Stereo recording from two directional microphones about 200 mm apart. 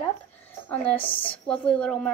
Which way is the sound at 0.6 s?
10° left (ahead or behind).